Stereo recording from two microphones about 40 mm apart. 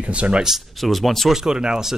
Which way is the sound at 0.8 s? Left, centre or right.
Centre.